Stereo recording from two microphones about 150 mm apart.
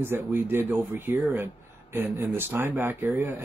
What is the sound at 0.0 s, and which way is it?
Speech, 15° right (ahead or behind).